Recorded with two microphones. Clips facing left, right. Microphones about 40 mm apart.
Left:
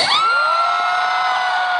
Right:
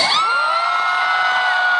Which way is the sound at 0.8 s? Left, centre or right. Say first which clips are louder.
Even; right.